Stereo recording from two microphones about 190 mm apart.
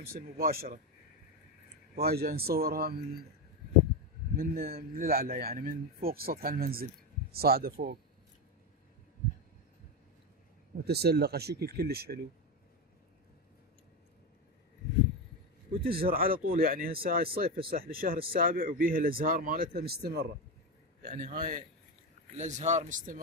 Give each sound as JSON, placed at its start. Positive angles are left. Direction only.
{"t": 0.0, "sound": "speech", "side_deg": -50}
{"t": 2.0, "sound": "speech", "side_deg": -55}
{"t": 4.4, "sound": "speech", "side_deg": -55}
{"t": 10.9, "sound": "speech", "side_deg": -55}
{"t": 15.8, "sound": "a man's voice", "side_deg": -55}